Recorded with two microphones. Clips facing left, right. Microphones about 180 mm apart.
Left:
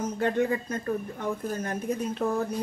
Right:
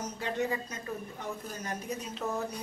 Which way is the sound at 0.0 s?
55° left (ahead or behind).